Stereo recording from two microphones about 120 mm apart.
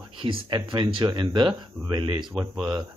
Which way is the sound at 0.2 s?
45° right (ahead or behind).